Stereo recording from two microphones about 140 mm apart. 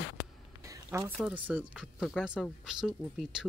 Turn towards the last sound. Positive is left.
turn(degrees=-5)  # may be behind; listen again after turning